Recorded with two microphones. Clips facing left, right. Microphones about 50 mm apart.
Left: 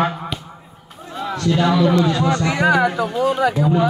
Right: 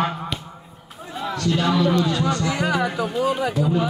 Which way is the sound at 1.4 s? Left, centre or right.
Left.